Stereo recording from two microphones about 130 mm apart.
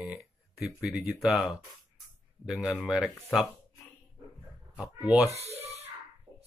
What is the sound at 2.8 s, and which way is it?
Speech, 5° right (ahead or behind).